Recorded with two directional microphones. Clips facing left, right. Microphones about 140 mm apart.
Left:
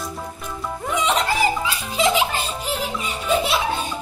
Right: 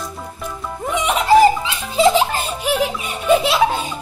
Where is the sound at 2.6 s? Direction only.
75° right (ahead or behind).